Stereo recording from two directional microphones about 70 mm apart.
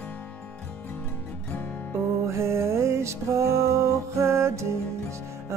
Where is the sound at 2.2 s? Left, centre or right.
Right.